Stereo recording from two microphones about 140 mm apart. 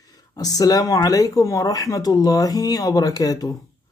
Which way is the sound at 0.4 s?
25° left (ahead or behind).